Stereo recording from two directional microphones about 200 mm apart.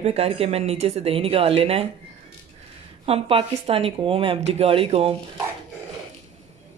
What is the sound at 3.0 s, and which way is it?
Speech, 30° right (ahead or behind).